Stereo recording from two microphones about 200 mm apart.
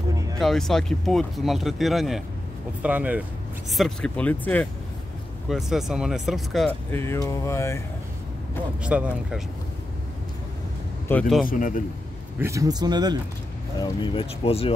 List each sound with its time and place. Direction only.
0.1 s music: 15° right (ahead or behind)
0.4 s speech: centre (ahead or behind)
3.7 s speech: centre (ahead or behind)
6.9 s speech: 10° left (ahead or behind)
8.8 s speech: 5° right (ahead or behind)
11.1 s speech: 5° left (ahead or behind)
11.4 s a man's voice: 40° left (ahead or behind)
12.4 s speech: 15° right (ahead or behind)
14.1 s speech: 30° left (ahead or behind)